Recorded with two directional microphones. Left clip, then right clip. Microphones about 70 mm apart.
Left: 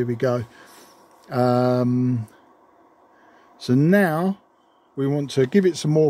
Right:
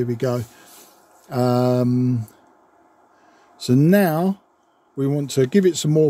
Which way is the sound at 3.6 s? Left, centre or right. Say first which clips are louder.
Right 1 dB; right.